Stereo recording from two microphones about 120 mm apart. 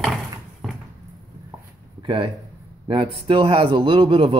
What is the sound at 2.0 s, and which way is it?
A man's voice, 45° right (ahead or behind).